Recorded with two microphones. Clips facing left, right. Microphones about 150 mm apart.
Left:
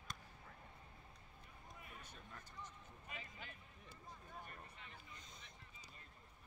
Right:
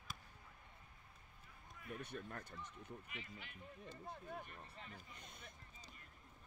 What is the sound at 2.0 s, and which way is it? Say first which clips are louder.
Speech: right 9 dB; 65° right (ahead or behind).